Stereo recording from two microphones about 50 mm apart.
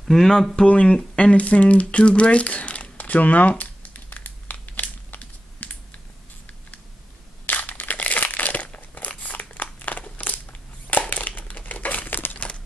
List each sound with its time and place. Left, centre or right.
0.0 s speech: centre
0.7 s speech: left
1.1 s crumpling: left
7.4 s crumpling: left
12.4 s crumpling: left